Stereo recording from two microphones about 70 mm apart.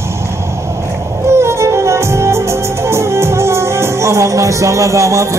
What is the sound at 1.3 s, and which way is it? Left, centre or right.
Music, right.